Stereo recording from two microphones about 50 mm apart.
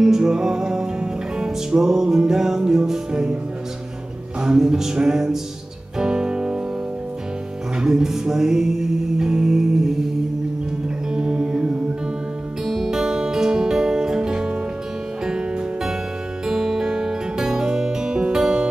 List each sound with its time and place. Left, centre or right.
0.0 s music: centre
4.4 s music: centre
7.8 s music: centre
11.1 s music: centre
12.6 s music: centre